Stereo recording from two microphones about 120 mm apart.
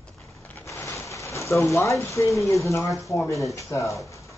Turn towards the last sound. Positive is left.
turn(degrees=25)  # may be behind; listen again after turning